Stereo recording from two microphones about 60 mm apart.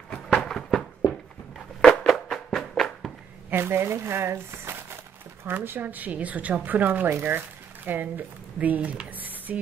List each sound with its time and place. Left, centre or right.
0.4 s fireworks: centre
1.8 s music: centre
3.4 s a woman's voice: right
9.1 s a sound: right